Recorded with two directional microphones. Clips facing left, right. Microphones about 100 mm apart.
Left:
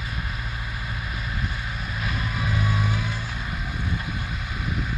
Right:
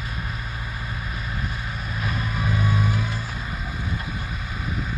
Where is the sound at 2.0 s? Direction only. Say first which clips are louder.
Right 2 dB; 35° right (ahead or behind).